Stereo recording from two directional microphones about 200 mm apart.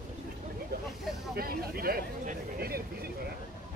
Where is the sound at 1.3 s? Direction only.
50° right (ahead or behind).